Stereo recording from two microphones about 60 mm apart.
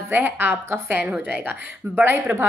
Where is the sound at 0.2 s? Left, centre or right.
Right.